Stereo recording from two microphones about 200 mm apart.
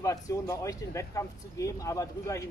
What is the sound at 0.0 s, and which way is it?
Speech, 15° left (ahead or behind).